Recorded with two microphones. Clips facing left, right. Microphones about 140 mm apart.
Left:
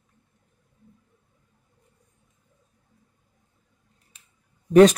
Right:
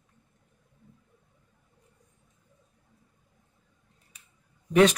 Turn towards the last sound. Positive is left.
turn(degrees=40)  # may be behind; listen again after turning